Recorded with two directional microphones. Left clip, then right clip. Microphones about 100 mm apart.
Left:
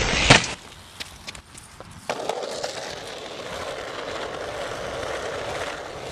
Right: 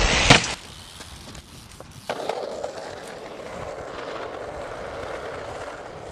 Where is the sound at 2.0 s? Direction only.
15° left (ahead or behind).